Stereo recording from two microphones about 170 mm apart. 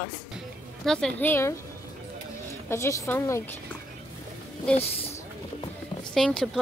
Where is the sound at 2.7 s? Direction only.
15° left (ahead or behind).